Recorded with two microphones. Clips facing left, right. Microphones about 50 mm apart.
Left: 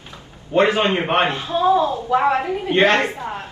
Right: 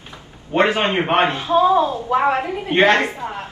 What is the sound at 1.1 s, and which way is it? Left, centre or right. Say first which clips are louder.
A man's voice: right 3 dB; right.